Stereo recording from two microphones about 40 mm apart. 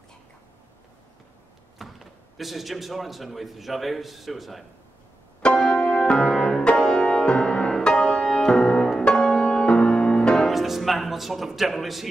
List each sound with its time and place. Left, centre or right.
1.8 s speech: centre
5.5 s music: centre
7.9 s music: centre
10.5 s speech: centre